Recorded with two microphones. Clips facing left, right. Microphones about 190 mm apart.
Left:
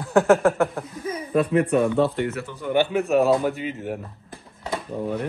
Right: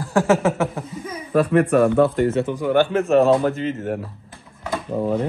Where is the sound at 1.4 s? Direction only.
60° right (ahead or behind).